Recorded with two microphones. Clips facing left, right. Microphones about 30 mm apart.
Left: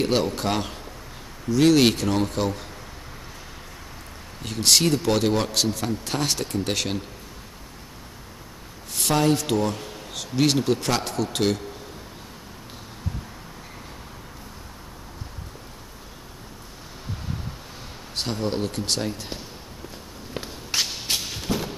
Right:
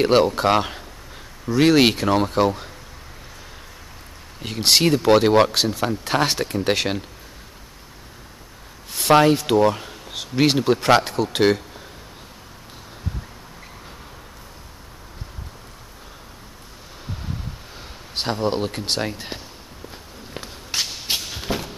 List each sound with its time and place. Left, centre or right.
0.0 s speech: right
4.4 s speech: right
9.3 s speech: right
18.1 s speech: right
20.3 s walk: centre
21.5 s a sound: right